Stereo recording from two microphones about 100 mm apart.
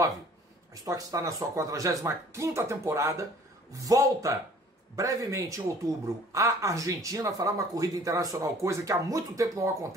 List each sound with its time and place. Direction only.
0.8 s speech: 35° right (ahead or behind)